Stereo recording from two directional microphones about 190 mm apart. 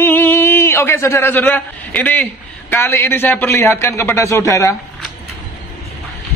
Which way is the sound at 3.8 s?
15° left (ahead or behind).